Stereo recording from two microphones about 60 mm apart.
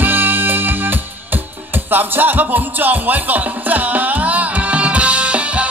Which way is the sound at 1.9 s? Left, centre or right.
Right.